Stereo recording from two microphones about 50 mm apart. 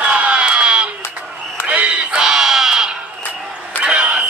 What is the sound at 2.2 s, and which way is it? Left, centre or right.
Crowd, centre.